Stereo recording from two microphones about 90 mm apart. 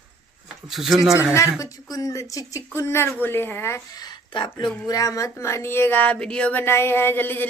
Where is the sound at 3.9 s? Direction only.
50° left (ahead or behind).